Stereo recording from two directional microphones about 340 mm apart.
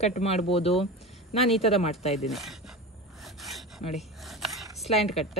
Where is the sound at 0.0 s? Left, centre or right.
Centre.